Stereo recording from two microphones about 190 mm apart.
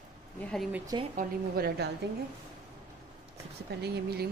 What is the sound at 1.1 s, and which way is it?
Speech, 55° right (ahead or behind).